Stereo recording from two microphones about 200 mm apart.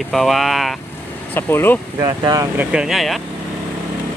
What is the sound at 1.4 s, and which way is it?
Speech, 10° left (ahead or behind).